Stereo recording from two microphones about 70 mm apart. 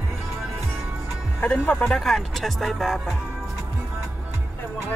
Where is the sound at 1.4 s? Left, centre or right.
Centre.